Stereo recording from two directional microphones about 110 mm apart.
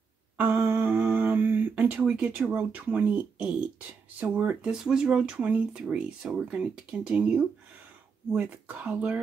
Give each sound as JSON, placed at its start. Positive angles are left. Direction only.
{"t": 0.4, "sound": "humming", "side_deg": -20}
{"t": 4.2, "sound": "speech", "side_deg": -15}